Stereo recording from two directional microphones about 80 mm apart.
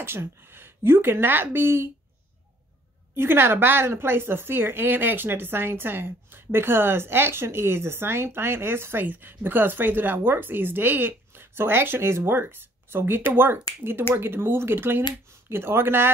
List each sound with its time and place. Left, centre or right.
0.0 s a woman's voice: right
3.2 s a woman's voice: right